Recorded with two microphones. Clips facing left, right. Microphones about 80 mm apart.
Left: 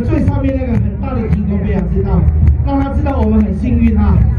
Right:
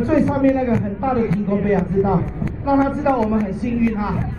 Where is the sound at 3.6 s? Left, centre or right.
Centre.